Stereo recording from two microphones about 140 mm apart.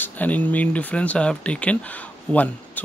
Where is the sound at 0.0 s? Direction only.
10° left (ahead or behind).